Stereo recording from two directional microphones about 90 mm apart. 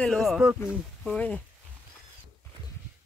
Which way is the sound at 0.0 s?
5° left (ahead or behind).